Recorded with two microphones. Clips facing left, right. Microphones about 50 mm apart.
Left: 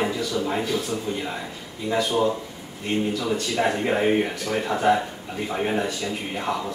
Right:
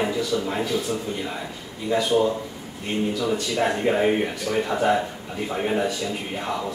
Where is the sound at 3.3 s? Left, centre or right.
Centre.